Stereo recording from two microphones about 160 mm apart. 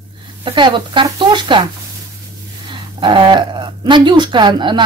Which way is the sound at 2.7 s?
30° right (ahead or behind).